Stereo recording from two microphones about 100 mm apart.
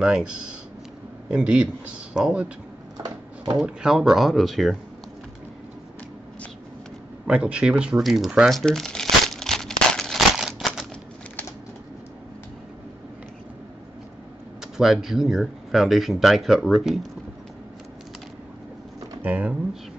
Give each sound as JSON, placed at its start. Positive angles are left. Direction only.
{"t": 0.0, "sound": "speech", "side_deg": -10}
{"t": 3.5, "sound": "speech", "side_deg": -5}
{"t": 7.2, "sound": "speech", "side_deg": -10}
{"t": 9.2, "sound": "a sound", "side_deg": 5}
{"t": 14.6, "sound": "speech", "side_deg": -5}
{"t": 19.2, "sound": "speech", "side_deg": -15}